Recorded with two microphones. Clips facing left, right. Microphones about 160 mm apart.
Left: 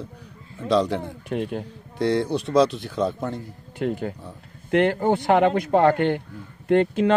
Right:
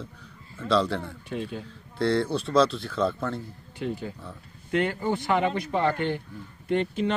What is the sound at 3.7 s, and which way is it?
Speech, 55° left (ahead or behind).